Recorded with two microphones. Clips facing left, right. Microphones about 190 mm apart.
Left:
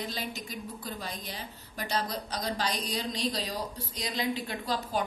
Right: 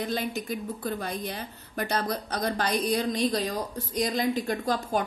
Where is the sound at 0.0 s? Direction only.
55° right (ahead or behind).